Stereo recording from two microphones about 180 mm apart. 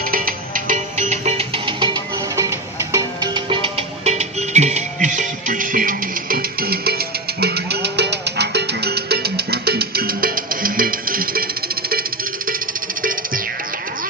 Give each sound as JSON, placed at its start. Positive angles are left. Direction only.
{"t": 0.1, "sound": "music", "side_deg": -50}